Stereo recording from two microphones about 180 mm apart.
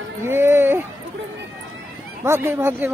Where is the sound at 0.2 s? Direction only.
10° right (ahead or behind).